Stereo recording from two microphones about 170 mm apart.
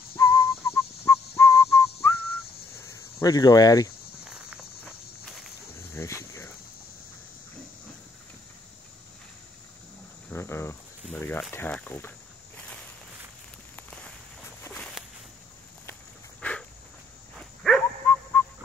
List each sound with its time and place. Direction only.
0.2 s whistling: 15° left (ahead or behind)
2.8 s cricket: 20° left (ahead or behind)
4.2 s walk: 5° right (ahead or behind)
5.9 s cricket: 15° left (ahead or behind)
10.3 s cricket: 15° left (ahead or behind)
11.1 s a sound: 10° left (ahead or behind)
12.5 s walk: 5° left (ahead or behind)
14.6 s a sound: 5° left (ahead or behind)
15.9 s walk: 5° left (ahead or behind)
17.4 s dog: 5° left (ahead or behind)